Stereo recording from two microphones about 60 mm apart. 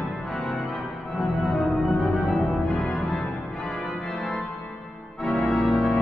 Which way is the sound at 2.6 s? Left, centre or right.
Centre.